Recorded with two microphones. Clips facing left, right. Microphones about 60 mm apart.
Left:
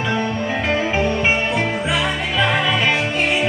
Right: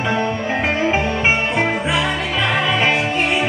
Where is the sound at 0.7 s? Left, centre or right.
Centre.